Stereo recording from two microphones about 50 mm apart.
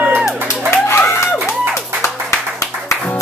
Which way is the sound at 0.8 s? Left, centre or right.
Left.